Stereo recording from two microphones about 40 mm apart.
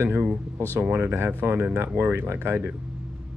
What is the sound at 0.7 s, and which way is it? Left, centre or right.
Speech, right.